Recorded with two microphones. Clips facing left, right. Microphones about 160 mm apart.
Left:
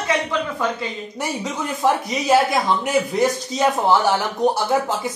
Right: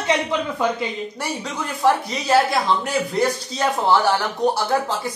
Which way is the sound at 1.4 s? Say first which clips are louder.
Right 1 dB; 15° left (ahead or behind).